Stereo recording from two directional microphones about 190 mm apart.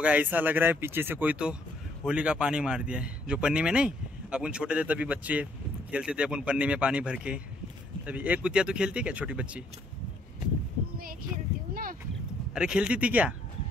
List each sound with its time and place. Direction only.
0.0 s a man's voice: 10° right (ahead or behind)
11.7 s a sound: 45° right (ahead or behind)
12.5 s a man's voice: 5° right (ahead or behind)